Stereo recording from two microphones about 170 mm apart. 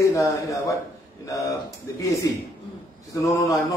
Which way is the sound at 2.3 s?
20° left (ahead or behind).